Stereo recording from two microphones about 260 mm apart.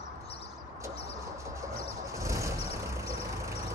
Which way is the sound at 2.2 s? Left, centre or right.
Centre.